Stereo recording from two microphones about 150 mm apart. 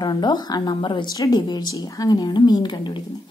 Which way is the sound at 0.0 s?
30° left (ahead or behind).